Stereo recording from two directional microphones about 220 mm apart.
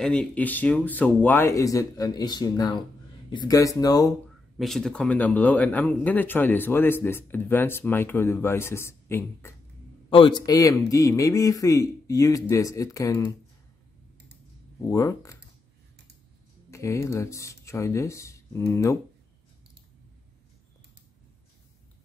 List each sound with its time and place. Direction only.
0.0 s speech: 5° left (ahead or behind)
4.6 s speech: centre (ahead or behind)
10.0 s a man's voice: 25° left (ahead or behind)
14.9 s speech: 15° left (ahead or behind)
16.7 s speech: 15° left (ahead or behind)